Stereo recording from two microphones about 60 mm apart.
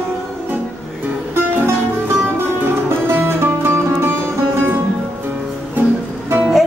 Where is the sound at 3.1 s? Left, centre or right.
Right.